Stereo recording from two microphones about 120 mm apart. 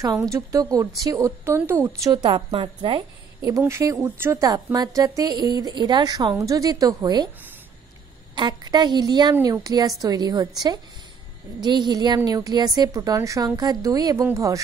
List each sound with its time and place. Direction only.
0.0 s a woman's voice: 30° right (ahead or behind)
2.2 s a woman's voice: 45° right (ahead or behind)
3.3 s a woman's voice: 25° right (ahead or behind)
8.4 s a woman's voice: 35° right (ahead or behind)